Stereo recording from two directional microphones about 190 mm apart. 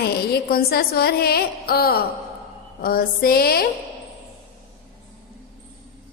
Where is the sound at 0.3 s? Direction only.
55° left (ahead or behind).